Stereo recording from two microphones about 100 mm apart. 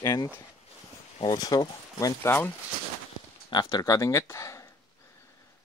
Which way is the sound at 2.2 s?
25° left (ahead or behind).